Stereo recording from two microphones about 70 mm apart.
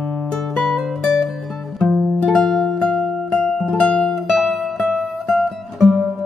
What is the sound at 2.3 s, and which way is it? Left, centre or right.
Music, centre.